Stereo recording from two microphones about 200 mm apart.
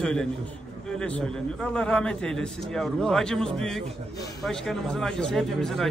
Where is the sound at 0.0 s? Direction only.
5° left (ahead or behind).